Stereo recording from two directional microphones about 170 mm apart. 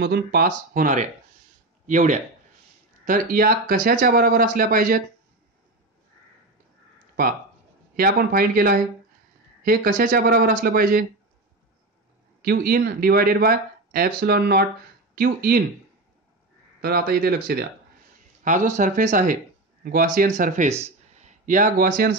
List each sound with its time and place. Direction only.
0.0 s speech: 65° right (ahead or behind)
7.9 s speech: 60° right (ahead or behind)
12.4 s speech: 65° right (ahead or behind)
16.8 s speech: 65° right (ahead or behind)
18.4 s speech: 50° right (ahead or behind)
20.8 s a sound: 45° right (ahead or behind); by 22.1 s 60° right (ahead or behind)